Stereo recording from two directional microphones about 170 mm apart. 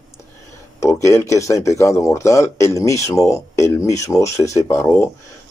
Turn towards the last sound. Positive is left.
turn(degrees=15)  # may be behind; listen again after turning